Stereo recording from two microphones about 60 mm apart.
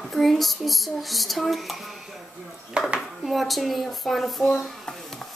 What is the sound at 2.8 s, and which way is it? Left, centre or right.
Speech, centre.